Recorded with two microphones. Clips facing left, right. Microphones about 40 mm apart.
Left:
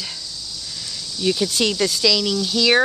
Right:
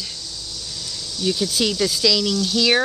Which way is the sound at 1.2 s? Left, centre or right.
Centre.